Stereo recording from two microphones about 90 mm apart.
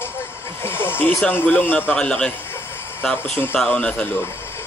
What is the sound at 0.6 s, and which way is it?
Speech, 25° left (ahead or behind).